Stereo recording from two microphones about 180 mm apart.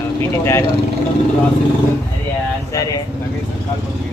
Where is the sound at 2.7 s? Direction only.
20° left (ahead or behind).